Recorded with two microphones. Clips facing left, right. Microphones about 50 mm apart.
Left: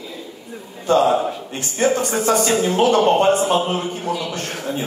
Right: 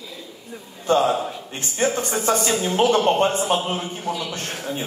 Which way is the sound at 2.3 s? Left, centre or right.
Left.